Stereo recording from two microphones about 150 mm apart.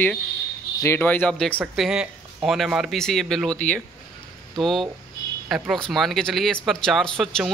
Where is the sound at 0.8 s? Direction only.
15° left (ahead or behind).